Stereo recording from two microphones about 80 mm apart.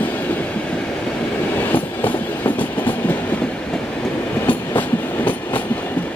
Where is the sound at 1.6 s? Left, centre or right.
Left.